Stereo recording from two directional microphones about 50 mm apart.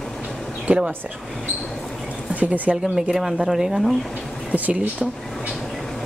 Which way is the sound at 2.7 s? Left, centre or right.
Centre.